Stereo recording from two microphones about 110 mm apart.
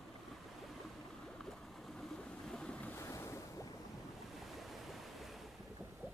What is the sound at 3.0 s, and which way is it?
Waves, 25° left (ahead or behind).